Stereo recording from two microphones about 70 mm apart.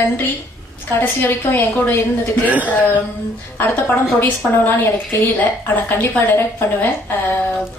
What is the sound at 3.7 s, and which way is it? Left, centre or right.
A woman's voice, left.